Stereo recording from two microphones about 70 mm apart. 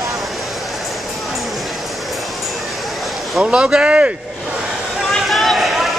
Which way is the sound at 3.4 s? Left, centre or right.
Centre.